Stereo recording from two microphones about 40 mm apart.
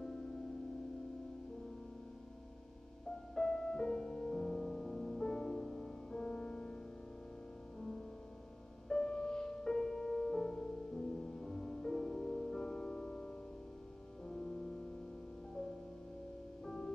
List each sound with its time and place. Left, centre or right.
0.0 s music: centre
3.3 s music: centre
8.8 s music: left